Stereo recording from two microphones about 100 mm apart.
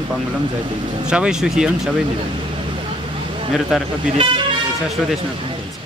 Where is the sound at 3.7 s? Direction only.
5° right (ahead or behind).